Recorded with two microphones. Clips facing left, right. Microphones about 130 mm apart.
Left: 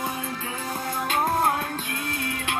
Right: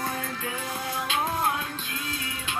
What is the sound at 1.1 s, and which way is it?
Music, 50° left (ahead or behind).